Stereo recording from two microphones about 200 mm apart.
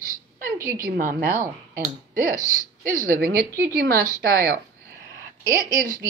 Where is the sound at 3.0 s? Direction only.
45° right (ahead or behind).